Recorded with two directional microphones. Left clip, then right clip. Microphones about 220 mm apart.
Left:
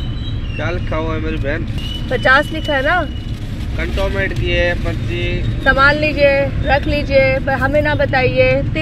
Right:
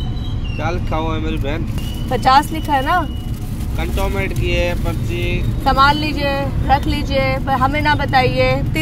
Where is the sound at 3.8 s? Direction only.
25° right (ahead or behind).